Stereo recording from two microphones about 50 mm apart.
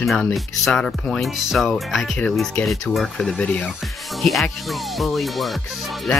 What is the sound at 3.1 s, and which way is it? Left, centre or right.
Speech, centre.